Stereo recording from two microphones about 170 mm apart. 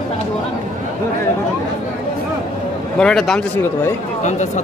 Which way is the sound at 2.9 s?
5° left (ahead or behind).